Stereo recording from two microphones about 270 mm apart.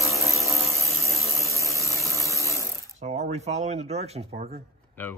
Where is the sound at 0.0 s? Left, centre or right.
Centre.